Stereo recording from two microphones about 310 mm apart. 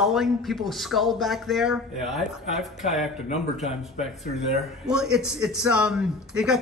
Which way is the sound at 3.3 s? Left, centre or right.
Left.